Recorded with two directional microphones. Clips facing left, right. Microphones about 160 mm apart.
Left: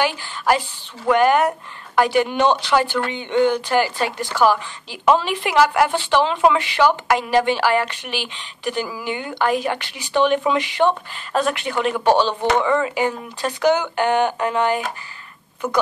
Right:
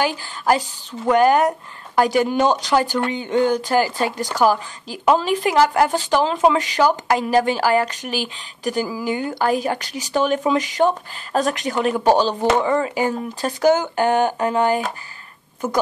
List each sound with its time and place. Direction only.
0.0 s speech: 40° right (ahead or behind)